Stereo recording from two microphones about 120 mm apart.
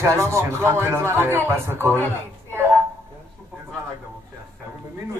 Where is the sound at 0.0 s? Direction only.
25° right (ahead or behind).